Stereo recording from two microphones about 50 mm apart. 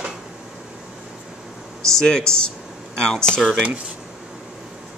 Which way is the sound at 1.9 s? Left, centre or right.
Centre.